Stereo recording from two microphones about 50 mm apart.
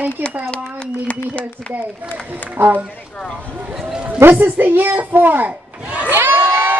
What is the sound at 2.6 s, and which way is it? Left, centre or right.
Speech, right.